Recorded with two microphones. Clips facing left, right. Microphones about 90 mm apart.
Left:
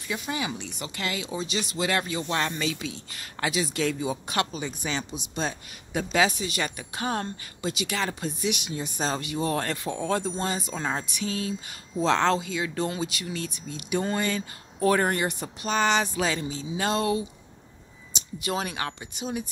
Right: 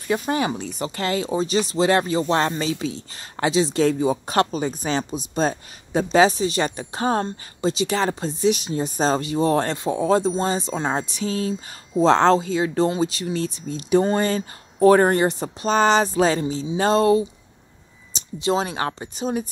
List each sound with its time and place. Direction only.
0.1 s speech: 45° right (ahead or behind)